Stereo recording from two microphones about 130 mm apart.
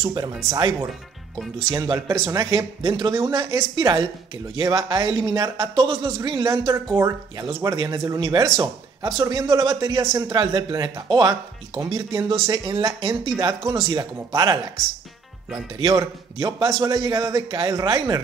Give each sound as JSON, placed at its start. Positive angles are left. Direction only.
{"t": 0.0, "sound": "a man's voice", "side_deg": -30}
{"t": 15.8, "sound": "a man's voice", "side_deg": -30}